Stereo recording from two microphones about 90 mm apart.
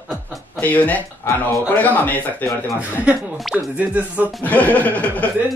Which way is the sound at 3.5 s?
15° right (ahead or behind).